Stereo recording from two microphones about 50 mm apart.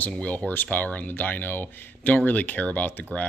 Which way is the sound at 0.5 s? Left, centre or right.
Left.